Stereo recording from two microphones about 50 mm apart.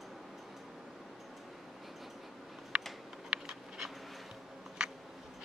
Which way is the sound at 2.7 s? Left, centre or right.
Right.